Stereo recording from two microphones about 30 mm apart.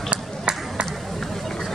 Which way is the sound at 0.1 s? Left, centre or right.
Right.